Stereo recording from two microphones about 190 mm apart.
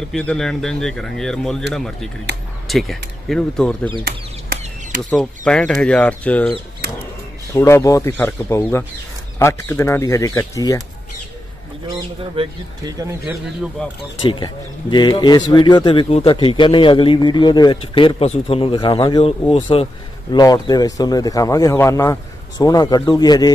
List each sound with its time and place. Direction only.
0.1 s speech: 5° left (ahead or behind)
2.7 s speech: centre (ahead or behind)
5.1 s speech: 5° left (ahead or behind)
7.5 s speech: 15° left (ahead or behind)
12.2 s speech: 30° right (ahead or behind)
13.8 s speech: 5° left (ahead or behind)
14.2 s speech: 25° left (ahead or behind)